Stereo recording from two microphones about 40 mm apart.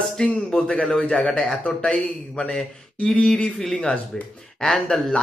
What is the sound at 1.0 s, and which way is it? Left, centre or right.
Speech, left.